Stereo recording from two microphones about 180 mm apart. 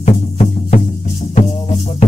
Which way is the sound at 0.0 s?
40° left (ahead or behind).